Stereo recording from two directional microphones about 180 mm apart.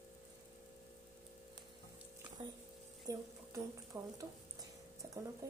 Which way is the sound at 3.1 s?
15° right (ahead or behind).